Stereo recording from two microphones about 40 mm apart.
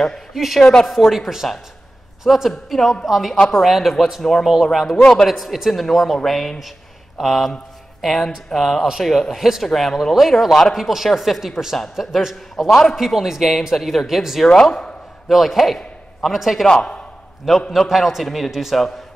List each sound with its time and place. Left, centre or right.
0.3 s speech: centre
0.6 s a man's voice: centre
0.8 s a man's voice: centre
4.2 s a man's voice: centre
8.5 s a man's voice: centre
12.6 s a man's voice: centre
12.9 s a man's voice: centre
14.4 s a man's voice: centre
15.2 s a man's voice: centre
16.6 s a man's voice: centre
17.5 s a man's voice: centre